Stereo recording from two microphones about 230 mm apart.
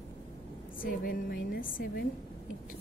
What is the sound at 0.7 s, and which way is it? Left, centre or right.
A woman's voice, left.